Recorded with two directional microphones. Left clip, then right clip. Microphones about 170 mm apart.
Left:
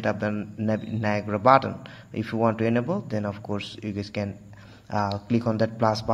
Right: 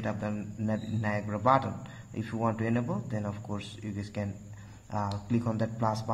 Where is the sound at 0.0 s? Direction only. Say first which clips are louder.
Left 8 dB; 30° left (ahead or behind).